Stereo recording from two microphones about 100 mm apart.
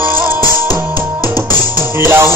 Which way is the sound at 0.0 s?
20° right (ahead or behind).